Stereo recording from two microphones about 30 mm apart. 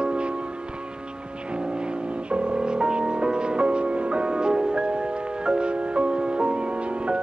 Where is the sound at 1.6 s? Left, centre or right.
Right.